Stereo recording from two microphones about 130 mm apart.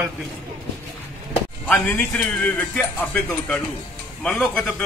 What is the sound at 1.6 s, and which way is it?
A man's voice, 10° left (ahead or behind).